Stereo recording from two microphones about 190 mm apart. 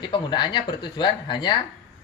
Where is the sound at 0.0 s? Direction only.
25° left (ahead or behind).